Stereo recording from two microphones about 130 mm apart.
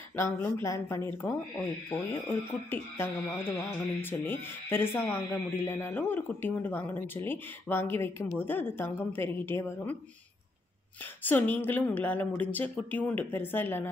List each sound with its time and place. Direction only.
0.1 s speech: 20° left (ahead or behind)
11.2 s speech: 15° left (ahead or behind)